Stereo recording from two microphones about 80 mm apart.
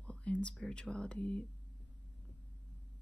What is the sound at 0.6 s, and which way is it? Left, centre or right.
Speech, centre.